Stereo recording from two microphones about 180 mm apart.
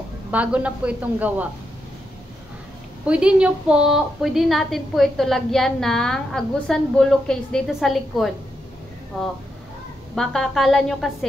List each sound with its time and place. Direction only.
0.3 s a woman's voice: 10° right (ahead or behind)
3.1 s a woman's voice: 5° right (ahead or behind)